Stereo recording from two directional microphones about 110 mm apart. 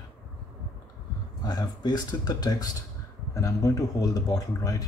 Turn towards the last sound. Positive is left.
turn(degrees=30)  # may be behind; listen again after turning